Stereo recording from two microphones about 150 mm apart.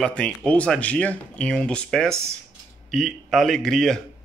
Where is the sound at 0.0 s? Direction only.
5° left (ahead or behind).